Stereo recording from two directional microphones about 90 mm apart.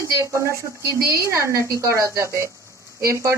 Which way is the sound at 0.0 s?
35° right (ahead or behind).